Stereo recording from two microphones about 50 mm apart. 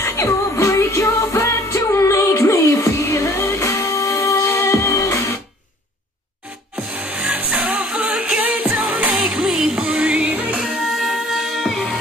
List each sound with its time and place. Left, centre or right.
0.0 s music: left
6.9 s music: right
9.4 s music: centre; by 10.6 s right
10.8 s music: centre